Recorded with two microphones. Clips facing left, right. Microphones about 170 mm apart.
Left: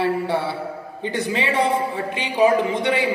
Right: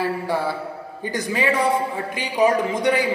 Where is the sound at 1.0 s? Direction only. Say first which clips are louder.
Right 1 dB; 25° left (ahead or behind).